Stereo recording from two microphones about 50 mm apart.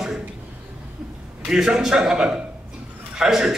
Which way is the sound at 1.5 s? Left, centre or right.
Centre.